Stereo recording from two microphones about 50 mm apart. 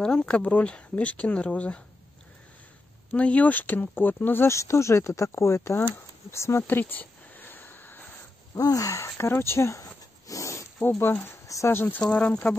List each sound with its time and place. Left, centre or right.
0.0 s speech: centre
3.1 s speech: left
4.5 s speech: left
5.3 s speech: left
6.7 s a sound: left
8.7 s speech: left
10.3 s dog: left
10.8 s speech: left
11.4 s speech: left
11.7 s speech: left
12.0 s speech: left